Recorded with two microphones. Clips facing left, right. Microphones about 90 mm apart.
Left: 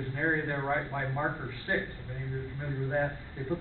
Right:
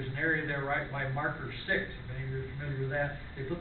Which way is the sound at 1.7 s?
20° left (ahead or behind).